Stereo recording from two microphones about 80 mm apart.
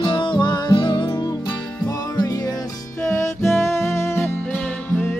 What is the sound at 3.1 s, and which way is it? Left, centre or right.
Music, left.